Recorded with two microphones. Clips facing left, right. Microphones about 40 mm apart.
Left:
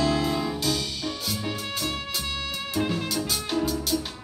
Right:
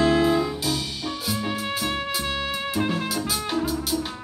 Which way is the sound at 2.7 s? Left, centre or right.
Centre.